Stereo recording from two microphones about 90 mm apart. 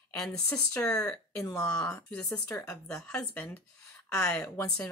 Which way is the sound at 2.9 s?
10° left (ahead or behind).